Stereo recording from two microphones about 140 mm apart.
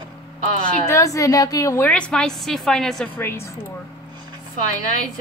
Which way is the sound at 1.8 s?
5° left (ahead or behind).